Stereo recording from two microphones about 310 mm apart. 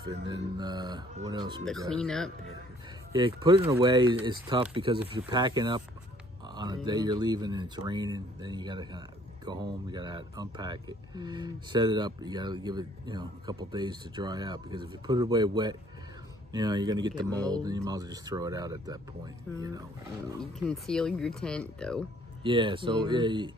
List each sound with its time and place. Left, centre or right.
0.3 s speech: centre
1.9 s speech: centre
3.1 s speech: centre
17.3 s speech: centre
17.6 s speech: centre
19.5 s speech: centre
22.4 s speech: centre